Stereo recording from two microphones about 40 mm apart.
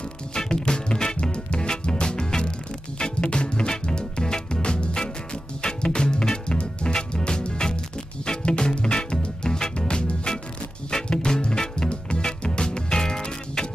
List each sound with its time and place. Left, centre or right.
0.3 s music: centre